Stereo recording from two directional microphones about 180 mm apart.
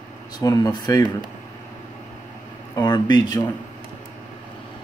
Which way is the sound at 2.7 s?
25° left (ahead or behind).